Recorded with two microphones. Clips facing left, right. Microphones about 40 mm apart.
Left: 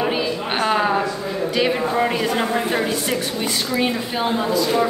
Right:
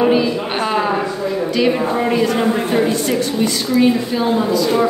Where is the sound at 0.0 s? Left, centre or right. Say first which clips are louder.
Right 7 dB; centre.